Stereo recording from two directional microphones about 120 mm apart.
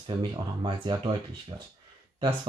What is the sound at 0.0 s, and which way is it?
Speech, 40° right (ahead or behind).